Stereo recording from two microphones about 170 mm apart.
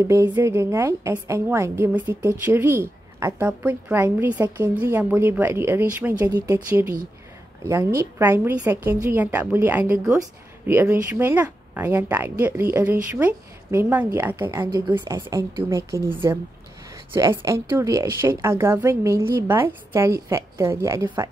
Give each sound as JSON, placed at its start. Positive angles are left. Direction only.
{"t": 0.0, "sound": "a woman's voice", "side_deg": -15}